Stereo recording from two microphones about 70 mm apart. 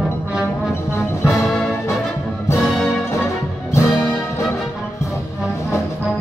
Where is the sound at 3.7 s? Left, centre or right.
Left.